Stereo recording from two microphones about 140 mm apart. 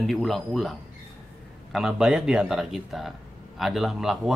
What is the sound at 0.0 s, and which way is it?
A man's voice, centre (ahead or behind).